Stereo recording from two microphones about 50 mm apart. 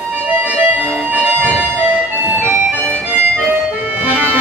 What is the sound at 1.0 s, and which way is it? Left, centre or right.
Music, right.